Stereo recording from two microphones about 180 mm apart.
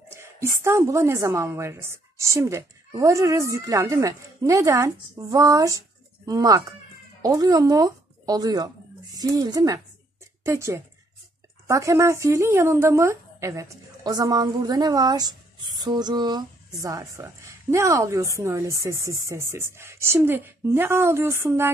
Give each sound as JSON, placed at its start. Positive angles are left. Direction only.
{"t": 0.1, "sound": "speech", "side_deg": -15}